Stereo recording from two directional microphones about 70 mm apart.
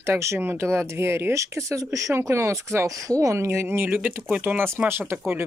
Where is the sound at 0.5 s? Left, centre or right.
Right.